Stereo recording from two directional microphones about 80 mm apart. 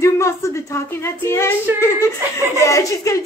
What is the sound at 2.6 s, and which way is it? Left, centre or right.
Child singing, left.